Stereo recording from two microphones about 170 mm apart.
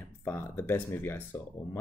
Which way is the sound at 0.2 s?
15° left (ahead or behind).